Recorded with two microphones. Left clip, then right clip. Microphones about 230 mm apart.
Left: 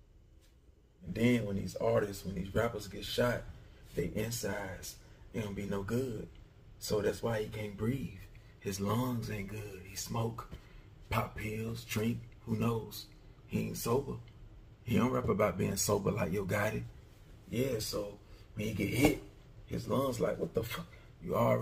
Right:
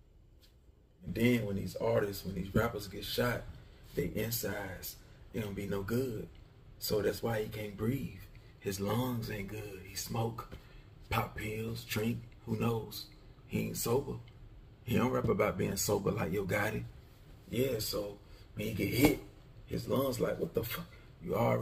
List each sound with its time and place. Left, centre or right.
1.1 s speech: centre
21.3 s speech: centre